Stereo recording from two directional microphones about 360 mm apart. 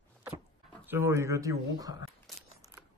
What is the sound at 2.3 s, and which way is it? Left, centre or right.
Biting, centre.